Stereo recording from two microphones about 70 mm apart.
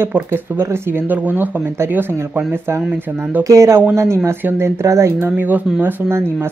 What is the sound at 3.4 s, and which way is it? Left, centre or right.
Speech, right.